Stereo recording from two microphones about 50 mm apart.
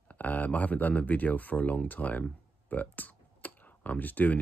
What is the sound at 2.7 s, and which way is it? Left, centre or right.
Computer keyboard, left.